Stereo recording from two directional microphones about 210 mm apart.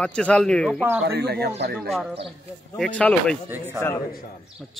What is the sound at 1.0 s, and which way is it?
Speech, 50° right (ahead or behind).